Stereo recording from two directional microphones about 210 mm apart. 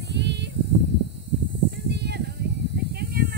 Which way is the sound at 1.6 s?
50° right (ahead or behind).